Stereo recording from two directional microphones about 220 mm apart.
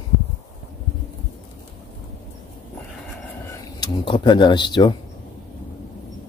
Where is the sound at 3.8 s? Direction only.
20° left (ahead or behind).